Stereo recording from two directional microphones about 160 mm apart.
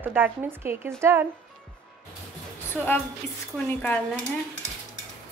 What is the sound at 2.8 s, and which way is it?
Speech, 5° left (ahead or behind).